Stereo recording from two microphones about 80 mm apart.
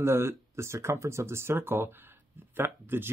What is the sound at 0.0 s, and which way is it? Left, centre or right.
Speech, right.